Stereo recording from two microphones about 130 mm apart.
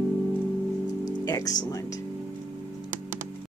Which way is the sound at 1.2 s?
30° left (ahead or behind).